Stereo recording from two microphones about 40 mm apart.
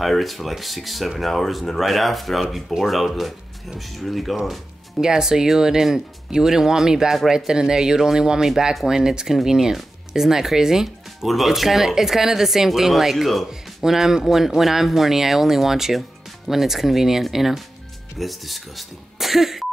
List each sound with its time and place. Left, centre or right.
0.0 s speech: centre
5.0 s speech: centre